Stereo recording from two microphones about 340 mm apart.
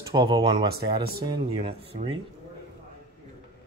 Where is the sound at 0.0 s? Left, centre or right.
Centre.